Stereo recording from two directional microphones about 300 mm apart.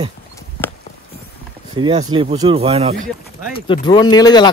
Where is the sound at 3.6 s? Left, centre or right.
Centre.